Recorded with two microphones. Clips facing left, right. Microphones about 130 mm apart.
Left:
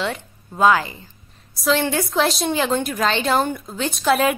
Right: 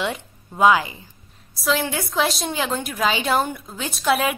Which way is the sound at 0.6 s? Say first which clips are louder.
Even; 15° right (ahead or behind).